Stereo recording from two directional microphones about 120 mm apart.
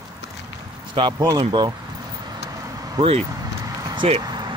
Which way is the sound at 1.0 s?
35° right (ahead or behind).